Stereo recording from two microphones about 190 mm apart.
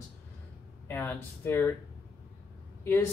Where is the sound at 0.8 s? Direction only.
10° left (ahead or behind).